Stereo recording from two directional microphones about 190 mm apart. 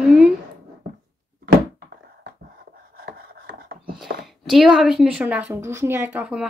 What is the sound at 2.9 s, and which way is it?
Chopping, 55° right (ahead or behind).